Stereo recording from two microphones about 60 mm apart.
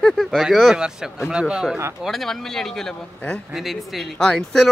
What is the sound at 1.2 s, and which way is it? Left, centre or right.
Speech, centre.